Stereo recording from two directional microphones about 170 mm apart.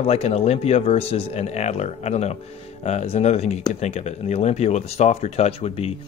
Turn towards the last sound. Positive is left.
turn(degrees=35)  # may be behind; listen again after turning